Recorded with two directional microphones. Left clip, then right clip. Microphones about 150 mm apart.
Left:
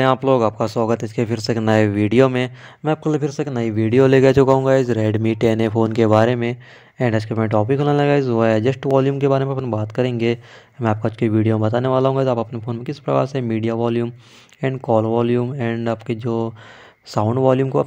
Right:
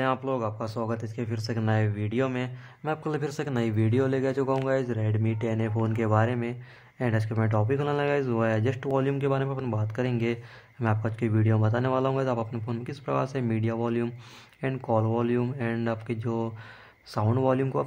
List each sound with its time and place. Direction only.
0.0 s speech: 50° left (ahead or behind); by 3.9 s 30° left (ahead or behind)
3.9 s speech: 55° left (ahead or behind)
4.6 s speech: 45° left (ahead or behind)